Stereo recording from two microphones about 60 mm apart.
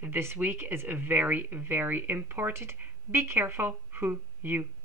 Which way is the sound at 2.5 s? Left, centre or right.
Right.